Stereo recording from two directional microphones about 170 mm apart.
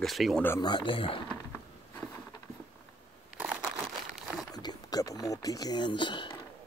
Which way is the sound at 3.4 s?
5° right (ahead or behind).